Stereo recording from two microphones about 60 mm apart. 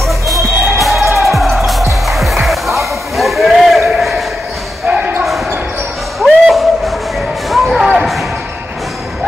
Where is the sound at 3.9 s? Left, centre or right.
Centre.